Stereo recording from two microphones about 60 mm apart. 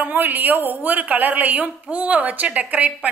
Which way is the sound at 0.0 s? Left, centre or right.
Right.